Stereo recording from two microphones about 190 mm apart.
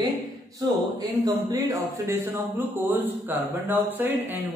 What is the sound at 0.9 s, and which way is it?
Speech, 20° right (ahead or behind).